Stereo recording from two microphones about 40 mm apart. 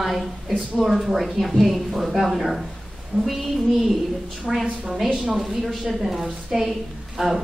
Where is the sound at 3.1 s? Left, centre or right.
Right.